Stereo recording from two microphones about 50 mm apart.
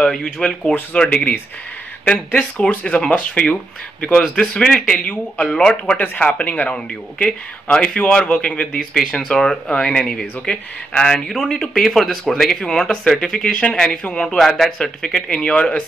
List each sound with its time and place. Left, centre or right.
0.1 s speech: centre
2.8 s speech: left
8.7 s speech: centre
14.3 s speech: centre